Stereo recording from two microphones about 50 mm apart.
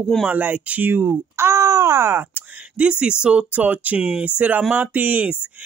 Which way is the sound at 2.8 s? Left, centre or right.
Right.